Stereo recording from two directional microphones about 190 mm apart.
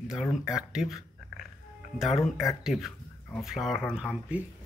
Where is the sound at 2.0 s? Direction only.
Centre (ahead or behind).